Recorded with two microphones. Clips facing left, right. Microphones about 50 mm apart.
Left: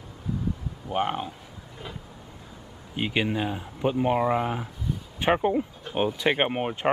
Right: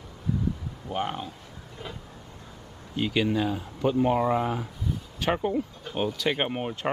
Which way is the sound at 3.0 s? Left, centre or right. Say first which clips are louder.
Right 1 dB; left.